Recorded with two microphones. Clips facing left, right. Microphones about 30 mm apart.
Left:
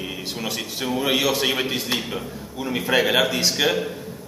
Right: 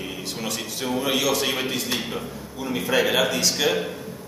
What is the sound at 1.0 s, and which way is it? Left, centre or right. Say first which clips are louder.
A man's voice: left 2 dB; centre.